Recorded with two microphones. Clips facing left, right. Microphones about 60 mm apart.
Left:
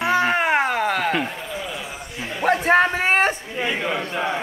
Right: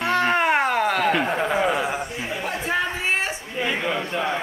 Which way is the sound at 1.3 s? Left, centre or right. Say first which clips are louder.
Right 9 dB; right.